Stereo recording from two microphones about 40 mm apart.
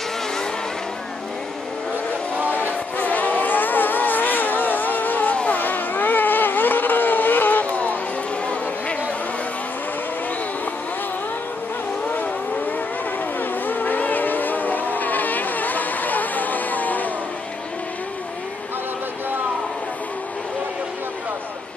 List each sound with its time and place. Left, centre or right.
3.0 s vehicle: left
5.3 s vehicle: left
5.6 s vehicle: left
7.7 s music: left
13.4 s a sound: left